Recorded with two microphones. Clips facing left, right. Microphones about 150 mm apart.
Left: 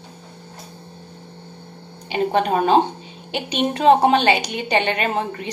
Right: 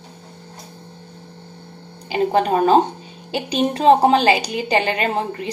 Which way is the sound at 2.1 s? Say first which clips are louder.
Right 2 dB; 35° right (ahead or behind).